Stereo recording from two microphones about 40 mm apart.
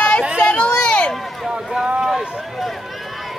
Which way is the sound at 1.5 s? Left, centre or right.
Centre.